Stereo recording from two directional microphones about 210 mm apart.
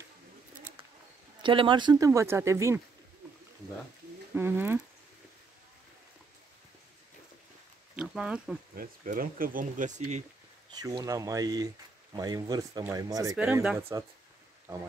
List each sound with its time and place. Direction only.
1.4 s speech: 25° right (ahead or behind)
4.3 s speech: 10° right (ahead or behind)
7.9 s a sound: 5° right (ahead or behind)
8.7 s speech: 40° right (ahead or behind)
10.7 s speech: 20° right (ahead or behind)